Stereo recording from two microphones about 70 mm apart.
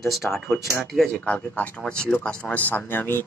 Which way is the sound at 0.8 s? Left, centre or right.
Centre.